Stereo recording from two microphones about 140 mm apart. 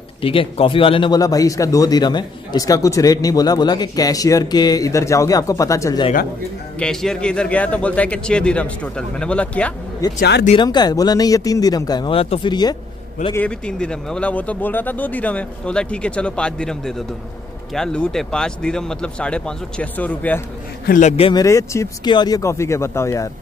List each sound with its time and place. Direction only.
0.2 s a man's voice: 40° left (ahead or behind); by 6.0 s 20° left (ahead or behind)
6.8 s speech: 5° left (ahead or behind)
10.0 s a man's voice: 25° left (ahead or behind)
13.3 s speech: 10° left (ahead or behind)
21.2 s speech: 35° left (ahead or behind)
21.5 s a man's voice: 20° left (ahead or behind)